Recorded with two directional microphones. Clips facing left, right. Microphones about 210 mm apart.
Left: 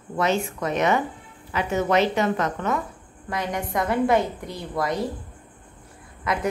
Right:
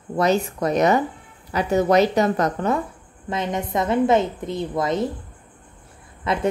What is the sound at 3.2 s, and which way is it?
A woman's voice, 25° right (ahead or behind).